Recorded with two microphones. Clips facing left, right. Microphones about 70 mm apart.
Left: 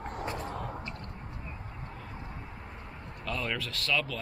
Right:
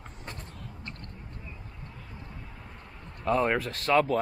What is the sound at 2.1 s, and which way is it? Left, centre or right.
Vehicle, left.